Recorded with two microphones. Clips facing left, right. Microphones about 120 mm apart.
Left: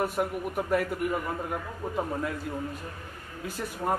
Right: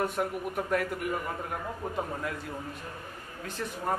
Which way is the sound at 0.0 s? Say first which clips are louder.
Left 2 dB; 5° left (ahead or behind).